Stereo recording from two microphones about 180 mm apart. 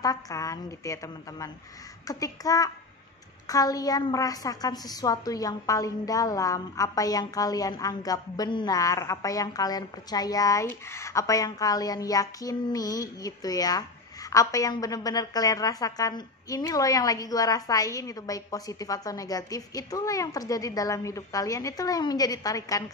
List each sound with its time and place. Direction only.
0.0 s a woman's voice: 20° left (ahead or behind)